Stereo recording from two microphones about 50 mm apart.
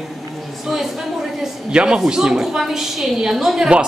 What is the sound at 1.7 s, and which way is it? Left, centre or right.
Speech, centre.